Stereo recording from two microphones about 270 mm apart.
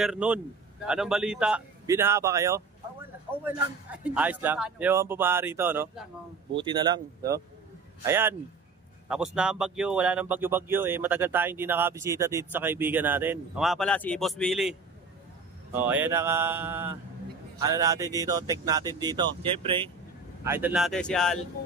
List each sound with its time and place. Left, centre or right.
0.0 s a man's voice: centre
20.4 s a man's voice: centre